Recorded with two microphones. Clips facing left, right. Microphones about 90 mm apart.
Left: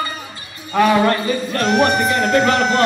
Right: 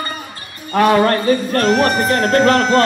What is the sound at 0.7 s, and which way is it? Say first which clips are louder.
Speech: right 2 dB; 45° right (ahead or behind).